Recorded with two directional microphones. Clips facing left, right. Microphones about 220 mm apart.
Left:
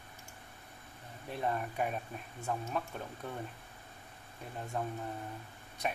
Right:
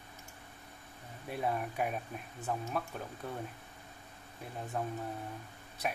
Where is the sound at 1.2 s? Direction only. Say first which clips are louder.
Right 1 dB; 10° right (ahead or behind).